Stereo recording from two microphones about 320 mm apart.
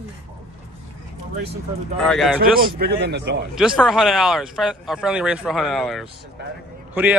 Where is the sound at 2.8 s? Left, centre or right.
Right.